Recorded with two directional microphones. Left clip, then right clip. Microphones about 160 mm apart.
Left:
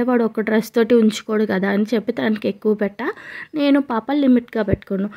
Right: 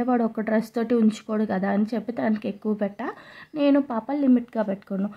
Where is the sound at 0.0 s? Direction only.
25° left (ahead or behind).